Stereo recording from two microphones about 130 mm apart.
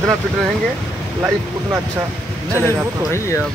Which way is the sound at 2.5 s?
20° right (ahead or behind).